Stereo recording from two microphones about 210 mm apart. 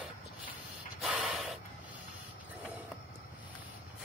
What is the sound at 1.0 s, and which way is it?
Snort, centre (ahead or behind).